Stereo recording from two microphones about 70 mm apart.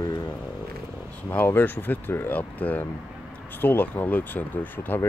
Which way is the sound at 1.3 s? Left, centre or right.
Left.